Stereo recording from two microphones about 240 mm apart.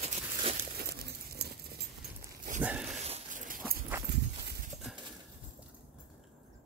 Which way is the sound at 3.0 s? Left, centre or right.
Right.